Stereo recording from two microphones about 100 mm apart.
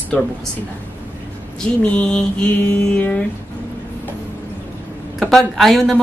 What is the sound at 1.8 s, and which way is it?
A woman's voice, 10° left (ahead or behind).